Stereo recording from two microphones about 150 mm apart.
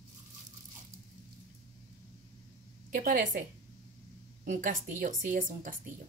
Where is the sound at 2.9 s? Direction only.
70° right (ahead or behind).